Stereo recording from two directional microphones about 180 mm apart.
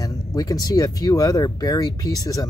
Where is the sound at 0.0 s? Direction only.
20° left (ahead or behind).